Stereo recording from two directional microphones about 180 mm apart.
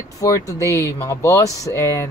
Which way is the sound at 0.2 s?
20° left (ahead or behind).